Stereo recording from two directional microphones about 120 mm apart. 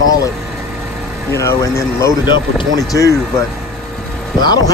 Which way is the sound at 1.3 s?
25° left (ahead or behind).